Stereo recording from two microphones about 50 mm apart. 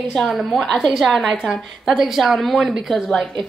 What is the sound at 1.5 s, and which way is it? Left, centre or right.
A woman's voice, centre.